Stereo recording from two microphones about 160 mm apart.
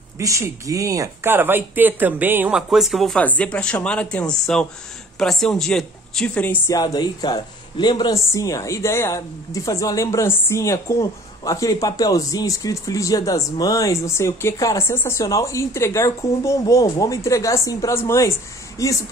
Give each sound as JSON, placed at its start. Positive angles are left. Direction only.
{"t": 0.2, "sound": "speech", "side_deg": -20}
{"t": 6.7, "sound": "speech", "side_deg": 25}